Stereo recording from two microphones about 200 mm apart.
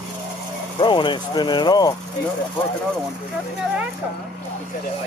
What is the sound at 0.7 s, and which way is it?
Speech, 25° left (ahead or behind).